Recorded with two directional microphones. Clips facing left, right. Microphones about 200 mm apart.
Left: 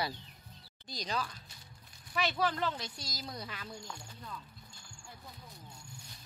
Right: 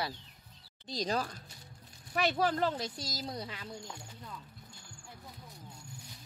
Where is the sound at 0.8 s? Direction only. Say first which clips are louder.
Right 4 dB; 35° right (ahead or behind).